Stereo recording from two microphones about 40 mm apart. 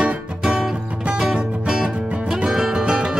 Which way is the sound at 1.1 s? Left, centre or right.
Centre.